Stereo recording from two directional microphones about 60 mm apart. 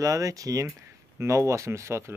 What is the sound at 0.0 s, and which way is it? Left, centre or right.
Speech, right.